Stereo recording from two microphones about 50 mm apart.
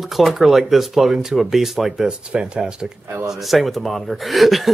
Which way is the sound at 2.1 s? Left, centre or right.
Centre.